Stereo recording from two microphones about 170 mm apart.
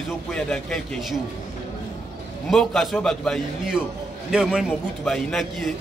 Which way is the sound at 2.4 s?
Centre (ahead or behind).